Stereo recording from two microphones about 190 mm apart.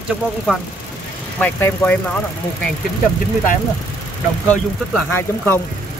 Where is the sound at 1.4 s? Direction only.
10° left (ahead or behind).